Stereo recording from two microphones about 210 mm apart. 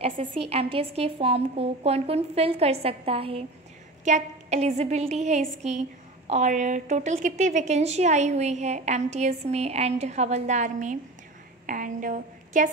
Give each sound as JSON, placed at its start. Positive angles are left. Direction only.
{"t": 0.0, "sound": "a woman's voice", "side_deg": -25}